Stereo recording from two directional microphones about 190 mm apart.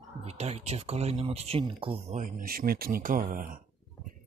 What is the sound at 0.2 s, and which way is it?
Speech, 35° right (ahead or behind).